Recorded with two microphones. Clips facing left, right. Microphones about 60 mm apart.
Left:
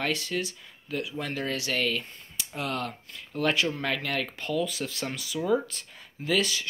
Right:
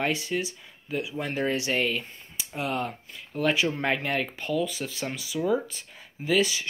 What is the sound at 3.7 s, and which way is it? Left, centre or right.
Speech, right.